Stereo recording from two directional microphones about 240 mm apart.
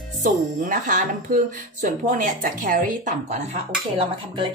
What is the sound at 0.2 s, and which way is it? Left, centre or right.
A woman's voice, right.